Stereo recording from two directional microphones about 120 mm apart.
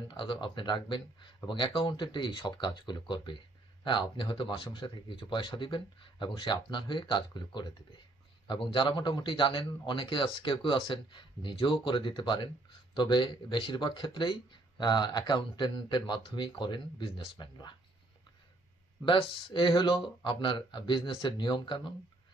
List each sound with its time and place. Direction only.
0.1 s a man's voice: 45° left (ahead or behind)
19.0 s a man's voice: 45° left (ahead or behind)